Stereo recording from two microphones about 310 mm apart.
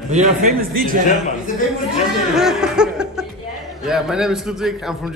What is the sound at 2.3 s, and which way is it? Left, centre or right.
A man's voice, centre.